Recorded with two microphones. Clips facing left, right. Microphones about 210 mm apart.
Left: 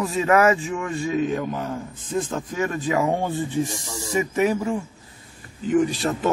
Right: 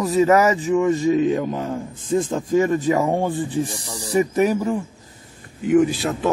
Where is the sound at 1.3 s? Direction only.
25° right (ahead or behind).